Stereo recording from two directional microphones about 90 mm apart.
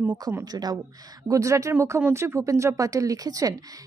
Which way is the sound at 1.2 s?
35° right (ahead or behind).